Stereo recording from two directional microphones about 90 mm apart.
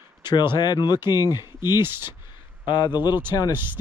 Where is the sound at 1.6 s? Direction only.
25° right (ahead or behind).